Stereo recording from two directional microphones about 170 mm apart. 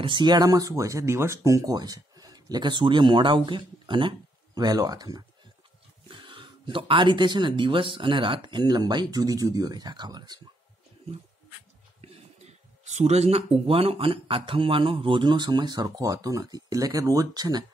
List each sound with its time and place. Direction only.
0.0 s speech: 25° right (ahead or behind)
12.0 s a sound: 40° right (ahead or behind)
13.7 s speech: 35° right (ahead or behind)